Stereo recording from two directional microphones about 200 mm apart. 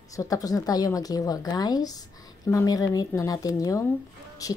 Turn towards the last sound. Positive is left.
turn(degrees=15)  # may be behind; listen again after turning